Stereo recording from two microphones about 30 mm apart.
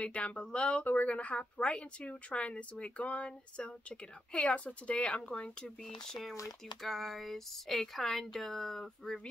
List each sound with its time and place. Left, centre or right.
0.0 s speech: left
0.8 s a woman's voice: left
3.2 s speech: left
4.6 s a woman's voice: left
4.9 s speech: left
6.8 s a sound: centre
7.9 s speech: centre